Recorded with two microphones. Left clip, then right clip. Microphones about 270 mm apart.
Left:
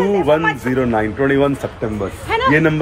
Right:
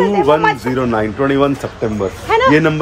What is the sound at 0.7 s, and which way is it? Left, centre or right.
Speech, centre.